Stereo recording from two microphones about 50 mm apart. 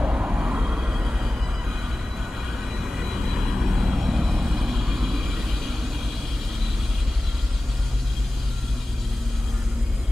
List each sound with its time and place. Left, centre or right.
0.0 s vehicle: right
2.8 s vehicle: centre